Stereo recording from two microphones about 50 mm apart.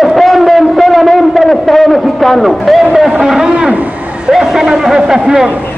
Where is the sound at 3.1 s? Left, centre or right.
Centre.